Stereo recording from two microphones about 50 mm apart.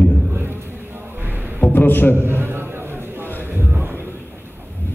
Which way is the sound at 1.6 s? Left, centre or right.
Left.